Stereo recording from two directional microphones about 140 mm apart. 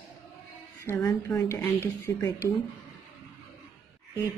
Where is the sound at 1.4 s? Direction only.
20° left (ahead or behind).